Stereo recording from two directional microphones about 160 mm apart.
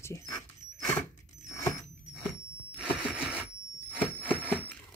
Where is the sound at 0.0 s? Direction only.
20° left (ahead or behind).